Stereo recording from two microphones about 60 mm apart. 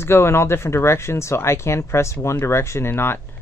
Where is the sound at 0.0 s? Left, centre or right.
Left.